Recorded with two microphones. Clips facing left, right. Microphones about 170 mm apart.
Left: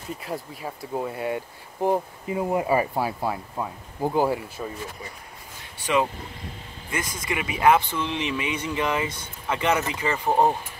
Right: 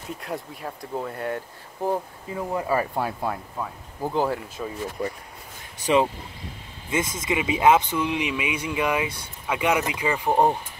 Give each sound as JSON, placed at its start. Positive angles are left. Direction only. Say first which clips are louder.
{"t": 0.2, "sound": "speech", "louder": "right 1 dB", "side_deg": 0}
{"t": 5.0, "sound": "speech", "louder": "right 11 dB", "side_deg": -70}
{"t": 5.8, "sound": "speech", "louder": "right 3 dB", "side_deg": -35}
{"t": 6.9, "sound": "speech", "louder": "right 4 dB", "side_deg": -20}